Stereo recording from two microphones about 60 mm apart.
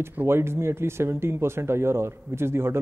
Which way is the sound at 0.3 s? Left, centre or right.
Right.